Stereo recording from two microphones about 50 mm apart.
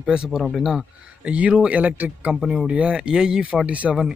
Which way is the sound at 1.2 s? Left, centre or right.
Right.